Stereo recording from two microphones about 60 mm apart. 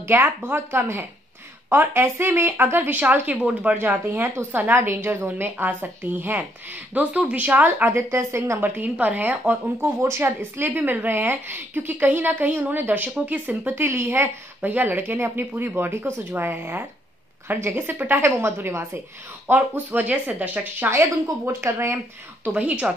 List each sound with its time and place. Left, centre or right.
0.1 s a woman's voice: right
3.7 s a woman's voice: right
6.9 s speech: right
7.4 s a woman's voice: right
9.8 s a woman's voice: right
10.7 s a woman's voice: right
14.6 s a woman's voice: right
19.4 s speech: right
21.5 s a woman's voice: right
22.4 s speech: right